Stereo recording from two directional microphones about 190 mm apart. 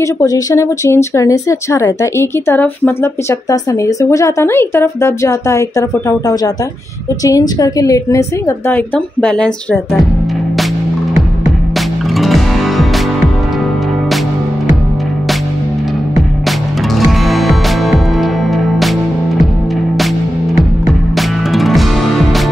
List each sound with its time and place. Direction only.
0.0 s speech: 20° left (ahead or behind)
12.2 s music: centre (ahead or behind)
17.3 s music: centre (ahead or behind)
21.5 s music: centre (ahead or behind)